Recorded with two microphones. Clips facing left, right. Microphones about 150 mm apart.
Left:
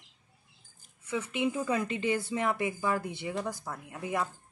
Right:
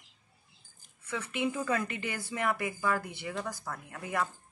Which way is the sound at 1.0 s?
15° left (ahead or behind).